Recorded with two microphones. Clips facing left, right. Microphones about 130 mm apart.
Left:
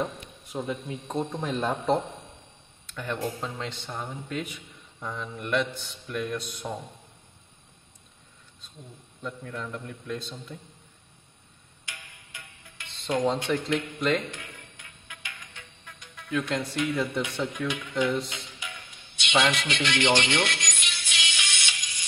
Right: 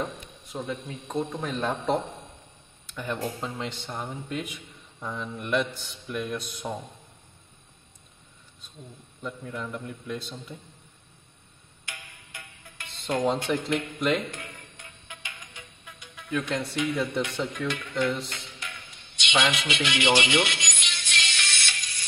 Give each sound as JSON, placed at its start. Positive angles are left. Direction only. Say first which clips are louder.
{"t": 0.5, "sound": "a man's voice", "louder": "left 2 dB", "side_deg": 5}
{"t": 2.9, "sound": "a man's voice", "louder": "even", "side_deg": -5}
{"t": 9.2, "sound": "a man's voice", "louder": "right 1 dB", "side_deg": -5}
{"t": 11.8, "sound": "music", "louder": "right 2 dB", "side_deg": -55}
{"t": 13.0, "sound": "a man's voice", "louder": "even", "side_deg": -5}
{"t": 14.3, "sound": "music", "louder": "right 2 dB", "side_deg": -40}
{"t": 15.1, "sound": "music", "louder": "right 2 dB", "side_deg": -25}
{"t": 15.5, "sound": "music", "louder": "right 1 dB", "side_deg": -5}